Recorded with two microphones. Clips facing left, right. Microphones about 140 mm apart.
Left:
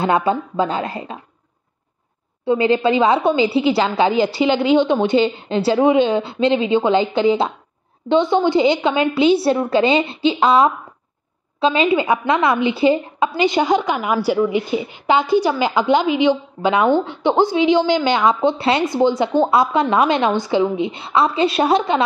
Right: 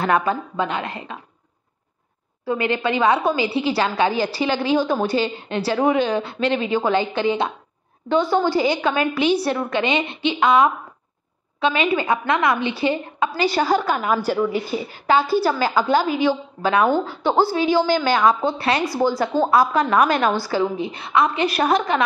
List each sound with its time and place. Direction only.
0.0 s speech: 25° left (ahead or behind)
2.4 s a woman's voice: 25° left (ahead or behind)